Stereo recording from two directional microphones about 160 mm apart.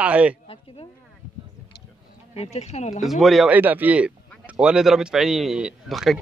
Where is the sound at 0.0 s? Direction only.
10° right (ahead or behind).